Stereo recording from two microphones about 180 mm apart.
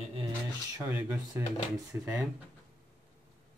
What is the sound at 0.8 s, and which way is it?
Speech, 10° right (ahead or behind).